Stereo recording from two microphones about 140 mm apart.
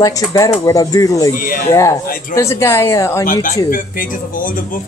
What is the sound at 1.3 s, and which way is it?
Speech, 90° left.